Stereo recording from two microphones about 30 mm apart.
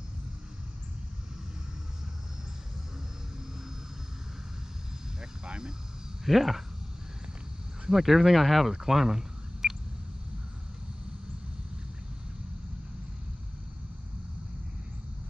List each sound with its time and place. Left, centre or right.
5.4 s vehicle: right
6.2 s speech: centre
7.9 s speech: centre
8.7 s a sound: centre